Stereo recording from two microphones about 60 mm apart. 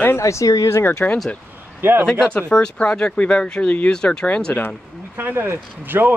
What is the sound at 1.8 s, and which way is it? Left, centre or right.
Speech, right.